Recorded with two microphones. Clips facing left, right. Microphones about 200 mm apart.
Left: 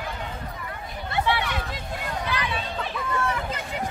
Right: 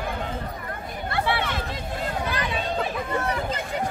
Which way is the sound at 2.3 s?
40° right (ahead or behind).